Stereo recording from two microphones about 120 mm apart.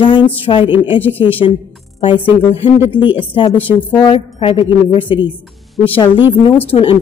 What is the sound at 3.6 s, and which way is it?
Speech, 45° left (ahead or behind).